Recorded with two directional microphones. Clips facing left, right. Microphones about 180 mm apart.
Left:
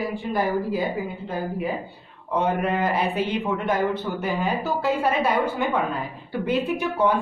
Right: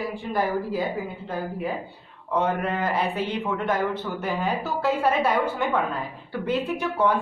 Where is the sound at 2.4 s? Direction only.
10° left (ahead or behind).